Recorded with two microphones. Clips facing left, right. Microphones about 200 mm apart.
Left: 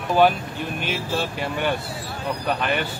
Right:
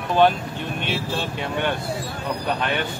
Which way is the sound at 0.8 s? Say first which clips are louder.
Left 1 dB; 5° left (ahead or behind).